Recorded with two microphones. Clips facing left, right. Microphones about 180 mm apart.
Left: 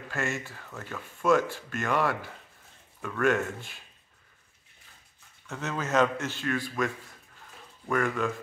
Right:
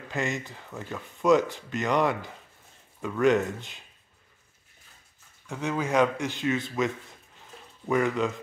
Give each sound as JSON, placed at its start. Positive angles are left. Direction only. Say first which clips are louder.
{"t": 0.1, "sound": "speech", "louder": "right 2 dB", "side_deg": -20}
{"t": 5.5, "sound": "speech", "louder": "right 2 dB", "side_deg": -15}
{"t": 7.9, "sound": "speech", "louder": "right 3 dB", "side_deg": -20}